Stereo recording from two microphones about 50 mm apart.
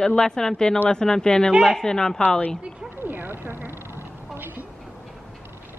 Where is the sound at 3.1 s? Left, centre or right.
Right.